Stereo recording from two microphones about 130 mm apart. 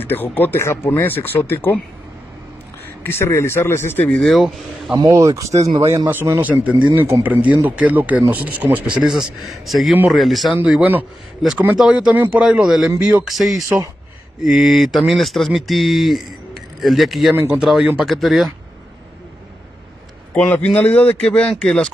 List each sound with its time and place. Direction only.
0.0 s speech: 15° left (ahead or behind)
3.0 s speech: 20° left (ahead or behind)
4.2 s speech: centre (ahead or behind)
4.9 s a man's voice: 25° right (ahead or behind); by 10.5 s centre (ahead or behind)
10.6 s a man's voice: 10° right (ahead or behind)
20.3 s speech: 15° left (ahead or behind)